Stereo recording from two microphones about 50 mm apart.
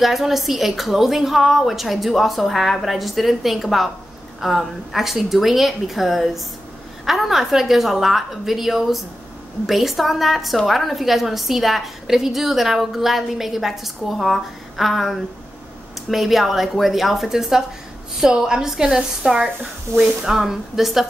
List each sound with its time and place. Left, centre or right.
0.0 s a woman's voice: centre
16.1 s a woman's voice: centre